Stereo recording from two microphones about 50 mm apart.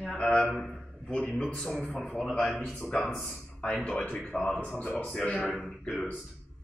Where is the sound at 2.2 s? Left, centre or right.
Centre.